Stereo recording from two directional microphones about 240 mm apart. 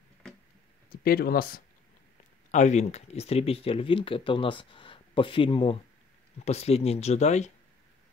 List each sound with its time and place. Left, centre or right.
1.0 s speech: left